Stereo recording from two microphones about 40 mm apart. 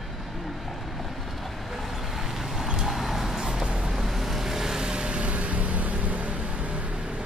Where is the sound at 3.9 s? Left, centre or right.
Centre; by 6.8 s right.